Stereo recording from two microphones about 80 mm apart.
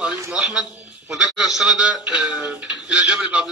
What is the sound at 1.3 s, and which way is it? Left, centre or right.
Speech, centre.